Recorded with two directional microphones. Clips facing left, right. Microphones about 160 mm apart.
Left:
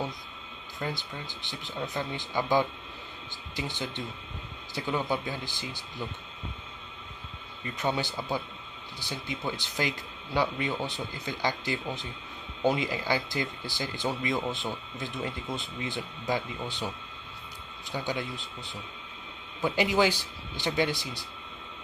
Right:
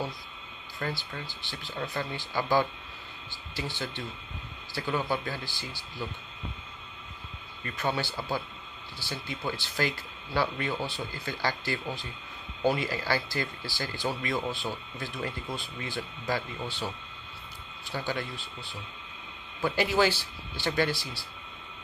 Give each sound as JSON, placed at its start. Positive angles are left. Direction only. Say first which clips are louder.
{"t": 0.7, "sound": "speech", "louder": "even", "side_deg": 15}
{"t": 7.6, "sound": "speech", "louder": "left 1 dB", "side_deg": 20}
{"t": 17.8, "sound": "speech", "louder": "left 1 dB", "side_deg": 20}